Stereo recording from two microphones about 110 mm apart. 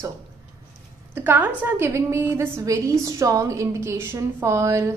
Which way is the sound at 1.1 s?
15° right (ahead or behind).